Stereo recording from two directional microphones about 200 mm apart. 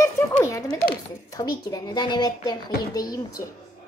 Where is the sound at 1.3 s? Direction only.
15° left (ahead or behind).